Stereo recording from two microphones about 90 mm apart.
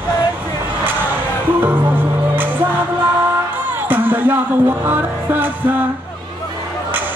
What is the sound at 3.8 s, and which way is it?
Music, 20° right (ahead or behind).